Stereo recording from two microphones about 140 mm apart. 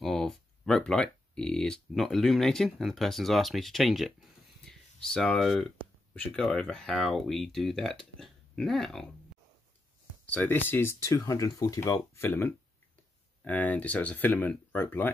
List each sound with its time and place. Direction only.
0.0 s speech: centre (ahead or behind)
10.2 s speech: 10° left (ahead or behind)